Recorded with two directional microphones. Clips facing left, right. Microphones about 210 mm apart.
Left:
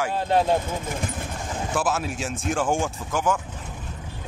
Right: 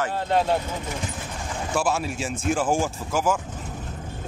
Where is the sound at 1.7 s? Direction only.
Centre (ahead or behind).